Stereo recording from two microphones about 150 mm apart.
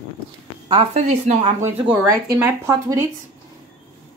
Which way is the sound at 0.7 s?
50° right (ahead or behind).